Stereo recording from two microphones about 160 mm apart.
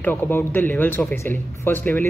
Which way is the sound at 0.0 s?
10° left (ahead or behind).